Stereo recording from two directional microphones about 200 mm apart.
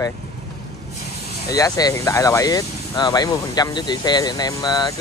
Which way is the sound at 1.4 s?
15° left (ahead or behind).